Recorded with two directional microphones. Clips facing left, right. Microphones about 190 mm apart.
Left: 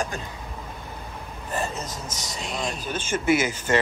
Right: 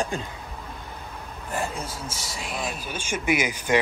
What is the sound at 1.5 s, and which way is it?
Speech, 10° right (ahead or behind).